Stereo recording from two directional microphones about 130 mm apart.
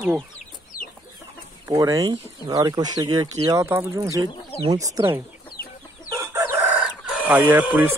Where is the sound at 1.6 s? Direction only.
25° right (ahead or behind).